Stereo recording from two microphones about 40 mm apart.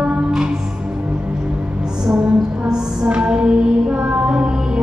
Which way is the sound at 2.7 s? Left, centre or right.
Right.